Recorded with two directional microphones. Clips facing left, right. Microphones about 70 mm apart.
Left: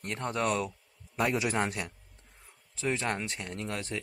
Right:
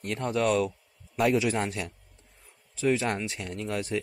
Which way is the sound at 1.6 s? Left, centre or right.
Left.